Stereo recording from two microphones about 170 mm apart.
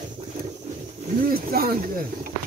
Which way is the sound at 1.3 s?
65° right (ahead or behind).